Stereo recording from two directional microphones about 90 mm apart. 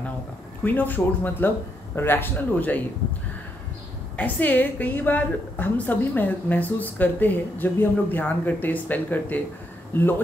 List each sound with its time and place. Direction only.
0.7 s a woman's voice: 20° left (ahead or behind)
4.2 s a woman's voice: 20° left (ahead or behind)